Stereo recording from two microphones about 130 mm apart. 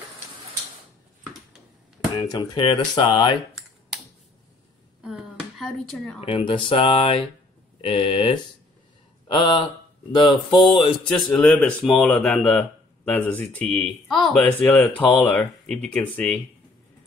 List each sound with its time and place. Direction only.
2.1 s speech: 30° left (ahead or behind)
2.5 s speech: 40° left (ahead or behind)
5.0 s a sound: centre (ahead or behind)
6.2 s speech: 40° left (ahead or behind)
11.8 s speech: centre (ahead or behind)